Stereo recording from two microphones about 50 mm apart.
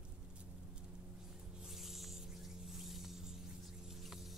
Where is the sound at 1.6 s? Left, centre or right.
Centre.